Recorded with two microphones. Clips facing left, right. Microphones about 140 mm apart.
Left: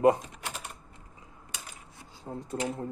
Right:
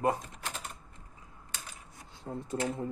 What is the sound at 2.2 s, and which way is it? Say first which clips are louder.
Speech: even; centre (ahead or behind).